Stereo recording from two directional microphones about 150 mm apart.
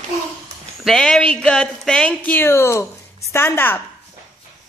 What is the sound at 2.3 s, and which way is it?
A woman's voice, 15° left (ahead or behind).